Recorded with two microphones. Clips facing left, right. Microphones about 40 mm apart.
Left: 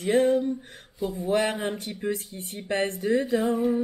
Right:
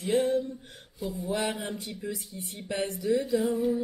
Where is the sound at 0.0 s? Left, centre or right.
Left.